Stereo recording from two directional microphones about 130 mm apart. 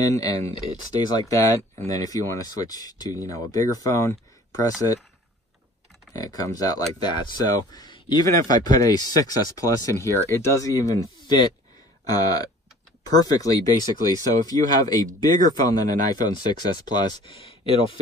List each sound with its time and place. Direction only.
0.0 s speech: 30° left (ahead or behind)
6.1 s speech: 25° left (ahead or behind)